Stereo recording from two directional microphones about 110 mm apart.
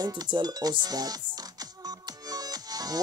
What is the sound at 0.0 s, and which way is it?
Music, 40° right (ahead or behind).